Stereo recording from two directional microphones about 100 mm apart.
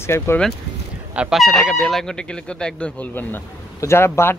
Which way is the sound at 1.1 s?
10° right (ahead or behind).